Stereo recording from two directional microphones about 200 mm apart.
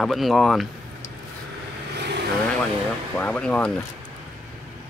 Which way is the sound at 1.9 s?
60° right (ahead or behind).